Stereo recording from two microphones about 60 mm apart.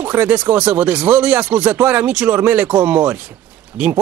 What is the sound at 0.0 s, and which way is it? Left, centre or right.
Speech, right.